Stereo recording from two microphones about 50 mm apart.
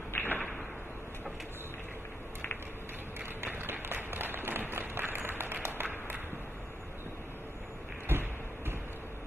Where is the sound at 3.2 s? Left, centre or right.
Right.